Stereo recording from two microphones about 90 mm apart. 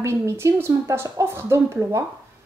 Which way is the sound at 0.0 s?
30° right (ahead or behind).